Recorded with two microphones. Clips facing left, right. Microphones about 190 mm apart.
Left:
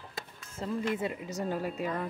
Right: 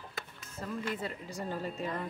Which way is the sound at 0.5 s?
25° left (ahead or behind).